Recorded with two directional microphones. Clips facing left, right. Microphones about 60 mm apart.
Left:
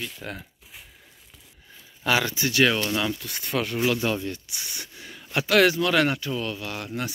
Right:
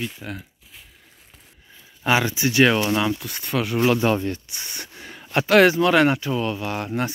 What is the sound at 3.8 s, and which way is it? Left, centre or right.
Speech, right.